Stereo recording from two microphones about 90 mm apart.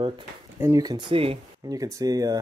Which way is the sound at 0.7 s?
50° right (ahead or behind).